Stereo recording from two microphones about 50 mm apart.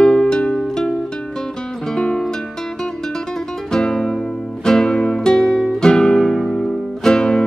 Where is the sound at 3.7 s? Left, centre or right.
Centre.